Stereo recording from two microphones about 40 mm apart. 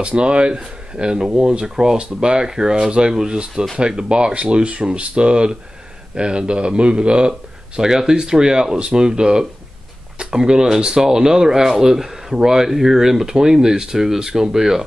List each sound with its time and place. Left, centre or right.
0.0 s speech: right; by 14.9 s centre